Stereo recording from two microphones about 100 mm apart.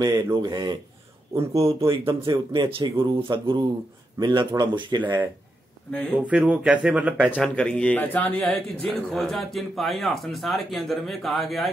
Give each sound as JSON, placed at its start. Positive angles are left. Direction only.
{"t": 0.0, "sound": "speech", "side_deg": -35}
{"t": 1.9, "sound": "speech", "side_deg": -50}
{"t": 5.0, "sound": "speech", "side_deg": -20}
{"t": 5.9, "sound": "speech", "side_deg": 10}
{"t": 6.1, "sound": "speech", "side_deg": -10}
{"t": 7.3, "sound": "speech", "side_deg": 10}